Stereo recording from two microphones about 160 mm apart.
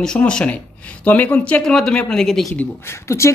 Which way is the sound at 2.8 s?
15° left (ahead or behind).